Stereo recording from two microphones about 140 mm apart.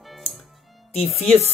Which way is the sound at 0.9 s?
Centre (ahead or behind).